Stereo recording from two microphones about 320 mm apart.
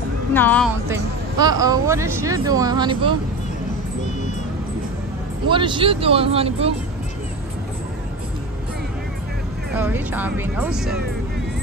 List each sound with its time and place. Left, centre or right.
0.3 s speech: centre
1.4 s speech: centre
5.5 s speech: centre
9.8 s speech: centre